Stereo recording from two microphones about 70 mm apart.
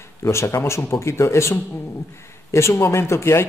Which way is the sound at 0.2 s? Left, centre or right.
Left.